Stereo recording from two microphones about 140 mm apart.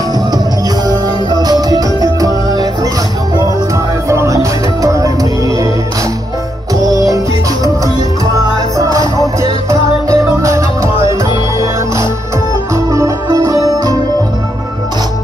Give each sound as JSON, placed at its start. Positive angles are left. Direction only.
{"t": 0.8, "sound": "music", "side_deg": -30}
{"t": 4.1, "sound": "music", "side_deg": -20}
{"t": 8.7, "sound": "music", "side_deg": -25}
{"t": 12.7, "sound": "music", "side_deg": -20}